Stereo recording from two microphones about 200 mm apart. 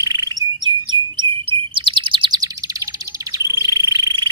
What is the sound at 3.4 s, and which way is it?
Bird, 15° right (ahead or behind).